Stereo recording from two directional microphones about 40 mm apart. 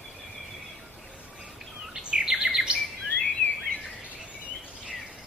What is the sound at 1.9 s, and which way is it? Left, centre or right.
Bird, right.